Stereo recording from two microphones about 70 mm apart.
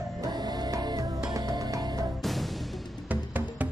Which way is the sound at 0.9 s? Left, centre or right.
Right.